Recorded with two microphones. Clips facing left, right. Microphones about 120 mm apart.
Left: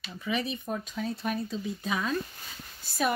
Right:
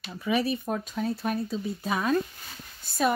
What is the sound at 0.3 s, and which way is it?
Speech, 10° right (ahead or behind).